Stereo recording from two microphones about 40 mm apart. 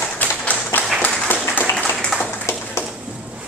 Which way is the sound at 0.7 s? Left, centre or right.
Left.